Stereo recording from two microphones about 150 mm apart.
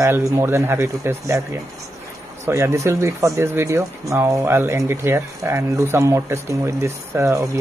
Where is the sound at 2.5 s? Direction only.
20° right (ahead or behind).